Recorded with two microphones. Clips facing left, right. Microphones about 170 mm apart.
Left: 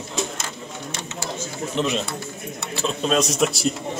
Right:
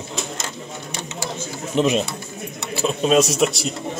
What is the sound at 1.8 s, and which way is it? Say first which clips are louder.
A man's voice: right 6 dB; 15° right (ahead or behind).